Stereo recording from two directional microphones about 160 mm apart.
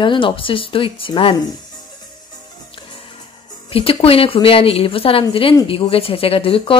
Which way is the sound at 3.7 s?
35° left (ahead or behind).